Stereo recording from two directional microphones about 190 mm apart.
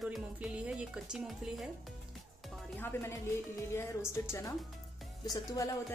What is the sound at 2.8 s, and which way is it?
A woman's voice, 10° left (ahead or behind).